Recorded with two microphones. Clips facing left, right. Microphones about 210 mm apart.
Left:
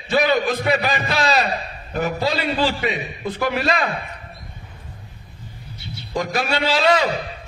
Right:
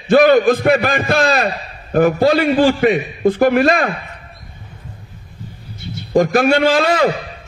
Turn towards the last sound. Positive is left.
turn(degrees=-50)  # may be behind; listen again after turning